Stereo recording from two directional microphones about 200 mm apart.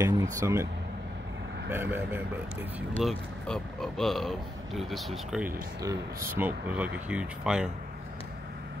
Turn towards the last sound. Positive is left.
turn(degrees=-5)  # may be behind; listen again after turning